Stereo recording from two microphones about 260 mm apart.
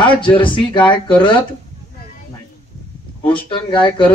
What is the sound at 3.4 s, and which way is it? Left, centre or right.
Speech, centre.